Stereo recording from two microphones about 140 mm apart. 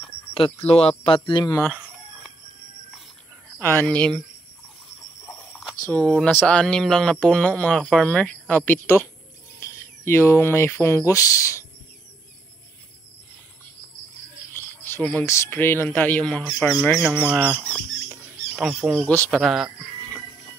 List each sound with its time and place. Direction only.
0.7 s speech: 45° left (ahead or behind)
3.8 s speech: 5° left (ahead or behind)
5.2 s squeal: 10° left (ahead or behind)
5.9 s speech: 5° left (ahead or behind); by 11.6 s 20° left (ahead or behind)
14.5 s speech: 15° left (ahead or behind)
16.4 s speech: centre (ahead or behind)
17.1 s speech: 10° right (ahead or behind)
19.0 s speech: 10° left (ahead or behind)
19.4 s music: centre (ahead or behind)